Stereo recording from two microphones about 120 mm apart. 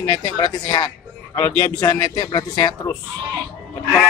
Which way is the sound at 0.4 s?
35° left (ahead or behind).